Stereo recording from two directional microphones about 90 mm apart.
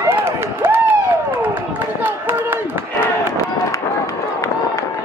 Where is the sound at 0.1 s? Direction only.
25° right (ahead or behind).